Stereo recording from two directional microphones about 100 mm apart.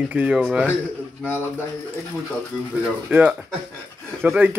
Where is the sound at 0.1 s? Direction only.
15° right (ahead or behind).